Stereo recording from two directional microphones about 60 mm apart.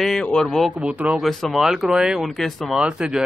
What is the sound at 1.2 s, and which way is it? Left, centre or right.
Speech, centre.